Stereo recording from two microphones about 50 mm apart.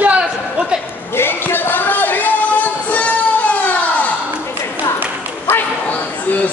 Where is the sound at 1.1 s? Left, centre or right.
Left.